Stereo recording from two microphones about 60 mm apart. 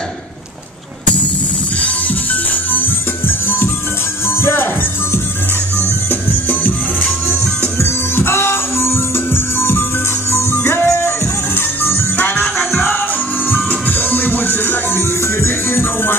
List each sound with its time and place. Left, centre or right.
3.4 s music: left
5.8 s music: left
7.8 s music: left
13.5 s music: left